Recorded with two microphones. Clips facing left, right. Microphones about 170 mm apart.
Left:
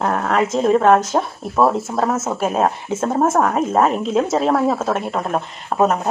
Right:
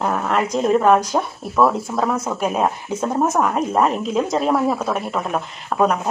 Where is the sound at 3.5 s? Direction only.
Centre (ahead or behind).